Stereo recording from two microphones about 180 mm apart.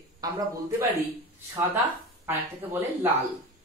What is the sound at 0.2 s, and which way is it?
Speech, 20° right (ahead or behind).